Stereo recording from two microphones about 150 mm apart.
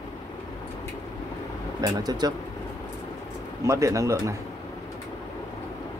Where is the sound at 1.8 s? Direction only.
25° right (ahead or behind).